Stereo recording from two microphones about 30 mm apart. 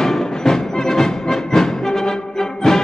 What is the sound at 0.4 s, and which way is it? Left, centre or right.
Music, centre.